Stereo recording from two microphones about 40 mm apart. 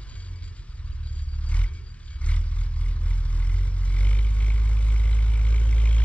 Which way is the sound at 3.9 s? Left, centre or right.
Left.